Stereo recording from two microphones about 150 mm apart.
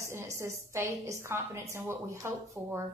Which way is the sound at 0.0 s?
20° right (ahead or behind).